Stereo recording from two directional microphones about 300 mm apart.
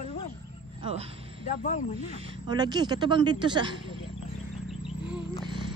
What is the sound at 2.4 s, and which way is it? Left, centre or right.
Speech, centre.